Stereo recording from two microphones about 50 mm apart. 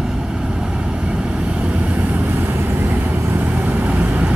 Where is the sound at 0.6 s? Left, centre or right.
Right.